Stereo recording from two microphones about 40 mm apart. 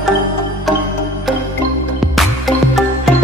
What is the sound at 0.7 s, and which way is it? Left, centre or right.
Music, centre.